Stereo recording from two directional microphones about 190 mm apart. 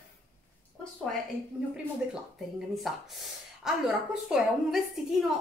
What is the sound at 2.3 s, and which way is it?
A woman's voice, centre (ahead or behind).